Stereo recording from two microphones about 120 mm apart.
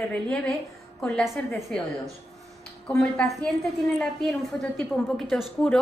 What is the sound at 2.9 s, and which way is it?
A woman's voice, 5° left (ahead or behind).